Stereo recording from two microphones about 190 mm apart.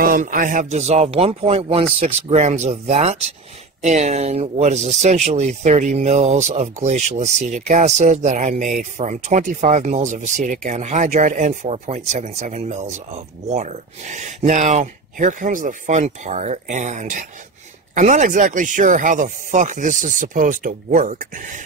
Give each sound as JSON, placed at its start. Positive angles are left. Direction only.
{"t": 0.0, "sound": "speech", "side_deg": -45}